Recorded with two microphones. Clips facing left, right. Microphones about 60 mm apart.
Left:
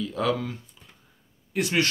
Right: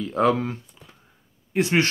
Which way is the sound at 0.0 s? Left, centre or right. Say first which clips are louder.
Right 5 dB; right.